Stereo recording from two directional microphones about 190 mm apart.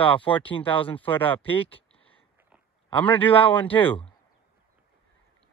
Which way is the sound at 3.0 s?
10° left (ahead or behind).